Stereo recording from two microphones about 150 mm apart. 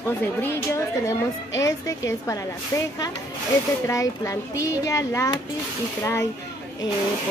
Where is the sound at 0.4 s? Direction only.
15° left (ahead or behind).